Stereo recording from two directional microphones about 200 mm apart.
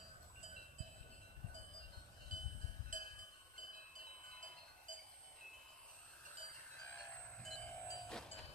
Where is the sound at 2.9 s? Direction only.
40° right (ahead or behind).